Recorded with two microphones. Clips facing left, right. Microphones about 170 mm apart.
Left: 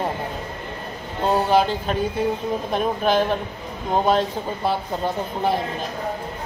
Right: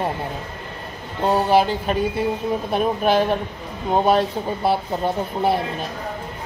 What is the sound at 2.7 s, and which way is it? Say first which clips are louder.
Speech: right 2 dB; 10° right (ahead or behind).